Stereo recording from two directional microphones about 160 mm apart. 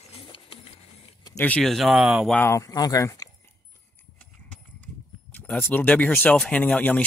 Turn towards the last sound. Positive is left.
turn(degrees=10)  # may be behind; listen again after turning